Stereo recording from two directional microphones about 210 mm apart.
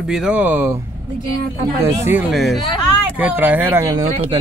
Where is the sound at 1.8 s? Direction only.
10° right (ahead or behind).